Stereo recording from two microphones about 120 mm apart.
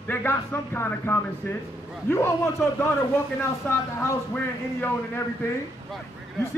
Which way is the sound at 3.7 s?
15° left (ahead or behind).